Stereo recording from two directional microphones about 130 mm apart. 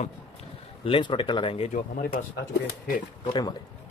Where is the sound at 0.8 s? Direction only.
40° left (ahead or behind).